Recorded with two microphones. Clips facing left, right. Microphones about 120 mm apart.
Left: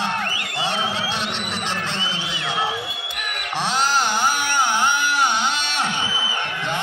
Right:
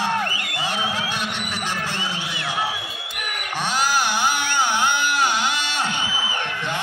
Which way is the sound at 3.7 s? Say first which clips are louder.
Left 1 dB; 5° right (ahead or behind).